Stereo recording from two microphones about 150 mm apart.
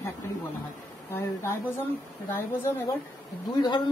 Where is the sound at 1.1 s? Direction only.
15° left (ahead or behind).